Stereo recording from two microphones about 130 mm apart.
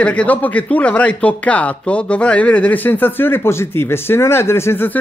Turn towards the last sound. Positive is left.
turn(degrees=15)  # may be behind; listen again after turning